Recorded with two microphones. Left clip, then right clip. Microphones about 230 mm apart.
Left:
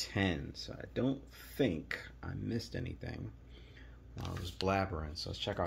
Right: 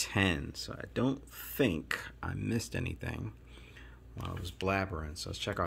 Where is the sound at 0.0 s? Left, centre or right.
Right.